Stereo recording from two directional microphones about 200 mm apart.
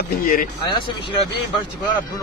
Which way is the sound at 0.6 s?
25° left (ahead or behind).